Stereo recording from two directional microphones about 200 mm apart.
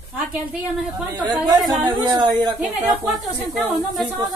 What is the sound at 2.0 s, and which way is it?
Speech, 20° right (ahead or behind).